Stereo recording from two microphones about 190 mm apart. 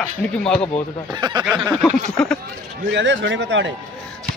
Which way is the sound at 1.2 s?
20° right (ahead or behind).